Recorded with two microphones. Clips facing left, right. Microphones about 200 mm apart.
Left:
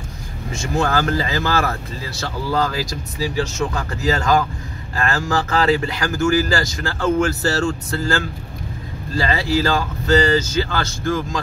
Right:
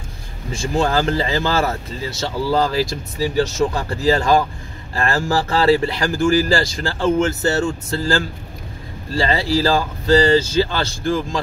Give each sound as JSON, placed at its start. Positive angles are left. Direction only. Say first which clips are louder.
{"t": 0.5, "sound": "speech", "louder": "right 1 dB", "side_deg": -30}